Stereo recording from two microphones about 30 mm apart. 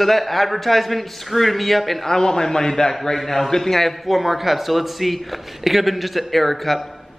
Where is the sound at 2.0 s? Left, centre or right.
Left.